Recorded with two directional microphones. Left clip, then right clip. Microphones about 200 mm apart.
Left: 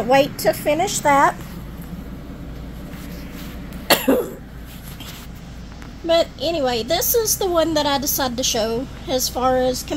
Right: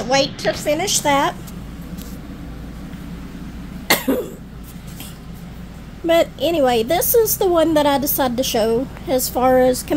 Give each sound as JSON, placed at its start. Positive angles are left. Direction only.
{"t": 0.1, "sound": "a woman's voice", "side_deg": 20}
{"t": 0.8, "sound": "a woman's voice", "side_deg": -10}
{"t": 3.9, "sound": "cough", "side_deg": 5}
{"t": 6.0, "sound": "a woman's voice", "side_deg": -30}